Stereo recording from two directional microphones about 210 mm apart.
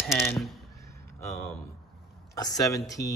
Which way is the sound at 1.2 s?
15° left (ahead or behind).